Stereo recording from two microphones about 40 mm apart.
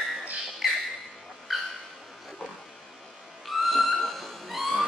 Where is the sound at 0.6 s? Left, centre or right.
Centre.